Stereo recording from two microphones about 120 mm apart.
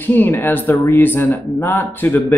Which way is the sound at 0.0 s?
15° left (ahead or behind).